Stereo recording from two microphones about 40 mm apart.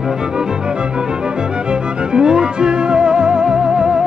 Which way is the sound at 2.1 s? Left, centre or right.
Centre.